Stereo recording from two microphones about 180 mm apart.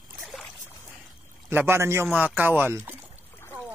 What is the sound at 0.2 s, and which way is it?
Boat, centre (ahead or behind).